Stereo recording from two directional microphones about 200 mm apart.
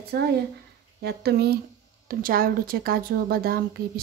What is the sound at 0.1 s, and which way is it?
A woman's voice, 55° right (ahead or behind).